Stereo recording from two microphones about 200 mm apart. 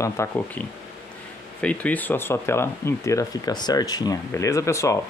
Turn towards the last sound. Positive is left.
turn(degrees=15)  # may be behind; listen again after turning